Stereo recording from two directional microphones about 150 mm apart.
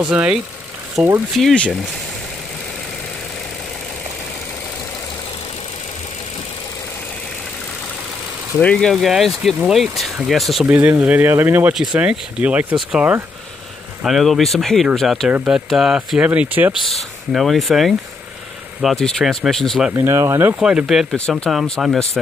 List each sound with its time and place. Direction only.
0.1 s speech: 10° right (ahead or behind)
8.5 s speech: 5° left (ahead or behind); by 16.7 s 10° right (ahead or behind)
16.9 s speech: centre (ahead or behind)
19.9 s speech: 20° right (ahead or behind)
20.5 s speech: 5° right (ahead or behind)